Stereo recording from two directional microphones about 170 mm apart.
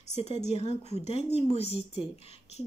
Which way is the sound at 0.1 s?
40° left (ahead or behind).